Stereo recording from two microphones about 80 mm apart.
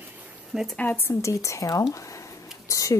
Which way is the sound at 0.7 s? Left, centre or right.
Left.